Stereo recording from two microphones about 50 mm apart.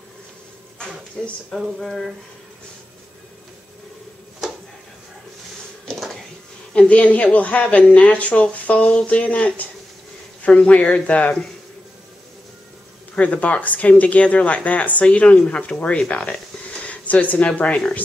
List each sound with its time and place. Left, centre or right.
1.2 s speech: centre
1.5 s a sound: centre
6.7 s speech: left
13.1 s speech: left